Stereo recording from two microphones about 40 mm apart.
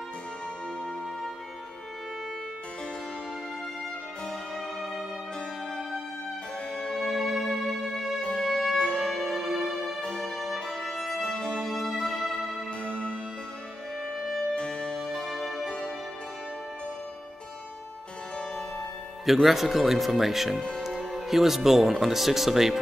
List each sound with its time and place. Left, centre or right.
6.7 s music: centre
7.0 s music: centre
9.9 s music: centre
10.3 s music: centre
11.1 s music: left
11.6 s music: centre
12.8 s music: left
14.2 s music: centre
14.5 s music: left
15.3 s music: centre
15.6 s music: left
19.2 s speech: centre
20.9 s music: centre
21.3 s speech: centre